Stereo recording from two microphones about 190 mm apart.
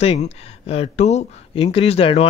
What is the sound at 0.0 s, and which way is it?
Speech, 35° left (ahead or behind).